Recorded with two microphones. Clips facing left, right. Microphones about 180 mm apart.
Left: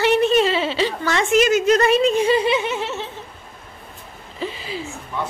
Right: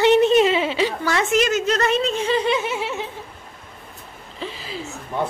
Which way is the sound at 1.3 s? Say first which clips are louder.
Left 6 dB; 10° left (ahead or behind).